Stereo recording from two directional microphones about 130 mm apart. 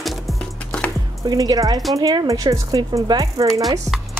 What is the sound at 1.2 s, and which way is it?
Speech, 30° right (ahead or behind).